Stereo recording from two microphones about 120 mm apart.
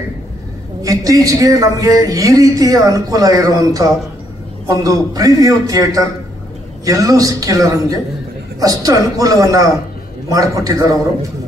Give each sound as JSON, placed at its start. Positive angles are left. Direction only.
{"t": 0.8, "sound": "a man's voice", "side_deg": -30}